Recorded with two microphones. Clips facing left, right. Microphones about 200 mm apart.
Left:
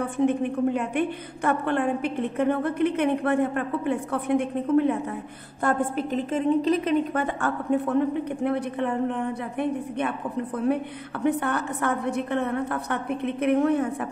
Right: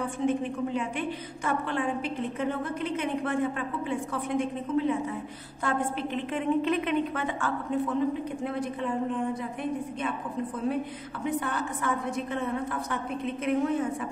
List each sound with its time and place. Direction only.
0.0 s a woman's voice: 60° left (ahead or behind); by 7.2 s 40° left (ahead or behind)
7.3 s a woman's voice: 60° left (ahead or behind)